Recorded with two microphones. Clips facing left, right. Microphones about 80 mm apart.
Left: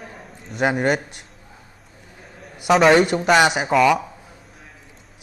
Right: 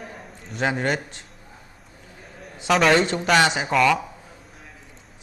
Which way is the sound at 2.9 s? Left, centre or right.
Centre.